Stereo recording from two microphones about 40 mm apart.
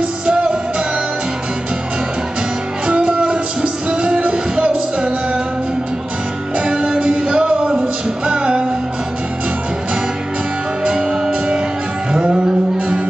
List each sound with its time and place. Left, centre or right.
0.3 s music: right
2.9 s music: right
6.7 s music: right
10.8 s music: right